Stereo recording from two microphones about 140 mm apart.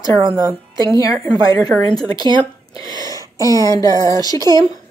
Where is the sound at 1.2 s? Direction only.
25° left (ahead or behind).